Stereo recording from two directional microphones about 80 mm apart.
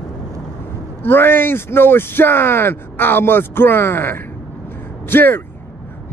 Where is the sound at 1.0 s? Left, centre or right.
Left.